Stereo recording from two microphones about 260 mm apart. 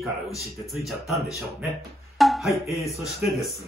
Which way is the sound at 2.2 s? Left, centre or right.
Centre.